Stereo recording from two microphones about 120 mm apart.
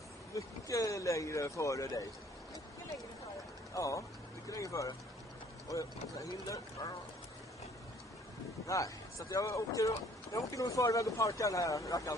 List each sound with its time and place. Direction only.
0.3 s speech: 25° left (ahead or behind)
3.7 s speech: 25° left (ahead or behind)
8.6 s speech: 25° left (ahead or behind)